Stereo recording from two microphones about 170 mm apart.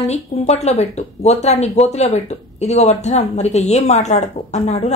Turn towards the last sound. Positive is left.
turn(degrees=40)  # may be behind; listen again after turning